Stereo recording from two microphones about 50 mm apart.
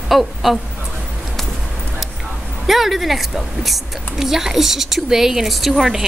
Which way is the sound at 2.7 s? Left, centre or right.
Centre.